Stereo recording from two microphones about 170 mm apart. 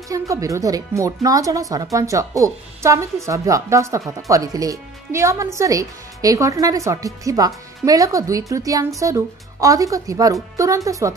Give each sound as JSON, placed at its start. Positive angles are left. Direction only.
{"t": 0.1, "sound": "speech", "side_deg": -20}